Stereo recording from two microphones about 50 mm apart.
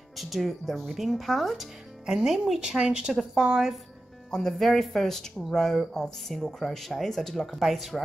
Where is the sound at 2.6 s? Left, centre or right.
Centre.